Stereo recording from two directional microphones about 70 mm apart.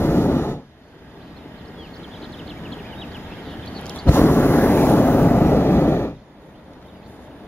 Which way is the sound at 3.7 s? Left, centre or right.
Centre.